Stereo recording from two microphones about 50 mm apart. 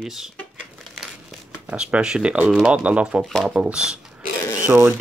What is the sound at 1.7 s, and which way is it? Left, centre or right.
Speech, right.